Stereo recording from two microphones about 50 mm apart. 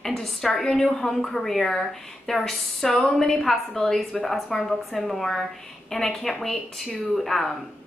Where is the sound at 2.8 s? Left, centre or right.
Centre.